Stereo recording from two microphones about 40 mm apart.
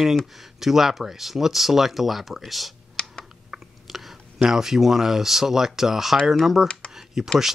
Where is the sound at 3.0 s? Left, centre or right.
Left.